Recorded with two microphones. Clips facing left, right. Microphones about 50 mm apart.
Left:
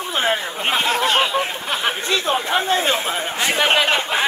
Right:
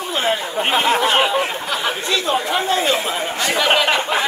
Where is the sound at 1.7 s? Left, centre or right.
Left.